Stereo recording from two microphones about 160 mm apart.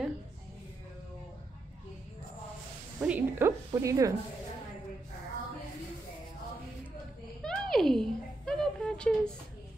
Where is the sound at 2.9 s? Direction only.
10° right (ahead or behind).